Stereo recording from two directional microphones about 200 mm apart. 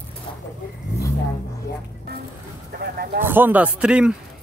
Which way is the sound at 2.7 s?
50° right (ahead or behind).